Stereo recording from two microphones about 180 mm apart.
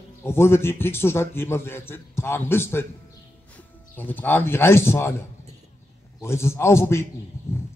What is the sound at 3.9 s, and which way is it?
Speech, 10° left (ahead or behind).